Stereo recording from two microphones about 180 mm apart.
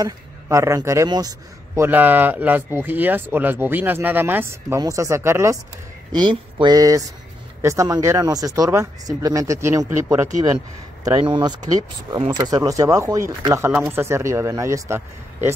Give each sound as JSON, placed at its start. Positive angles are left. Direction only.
{"t": 0.0, "sound": "speech", "side_deg": -15}
{"t": 1.8, "sound": "speech", "side_deg": -10}